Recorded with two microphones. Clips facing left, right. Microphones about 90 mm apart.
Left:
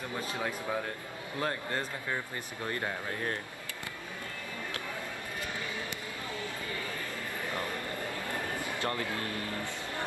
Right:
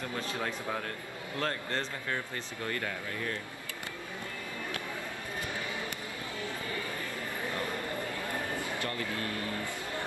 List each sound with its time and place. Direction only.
1.4 s speech: 15° left (ahead or behind)
3.1 s speech: 40° left (ahead or behind)
8.8 s speech: 25° left (ahead or behind)